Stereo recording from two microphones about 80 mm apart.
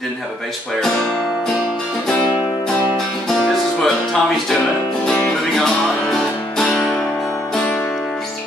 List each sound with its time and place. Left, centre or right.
3.4 s music: centre
5.0 s music: centre
6.6 s music: centre